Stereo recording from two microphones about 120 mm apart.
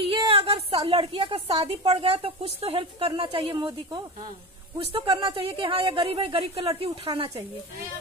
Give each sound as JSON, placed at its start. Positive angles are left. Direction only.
{"t": 0.0, "sound": "a woman's voice", "side_deg": -50}
{"t": 4.7, "sound": "speech", "side_deg": -50}